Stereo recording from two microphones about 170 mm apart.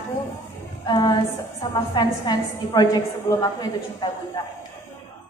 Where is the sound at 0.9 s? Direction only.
25° left (ahead or behind).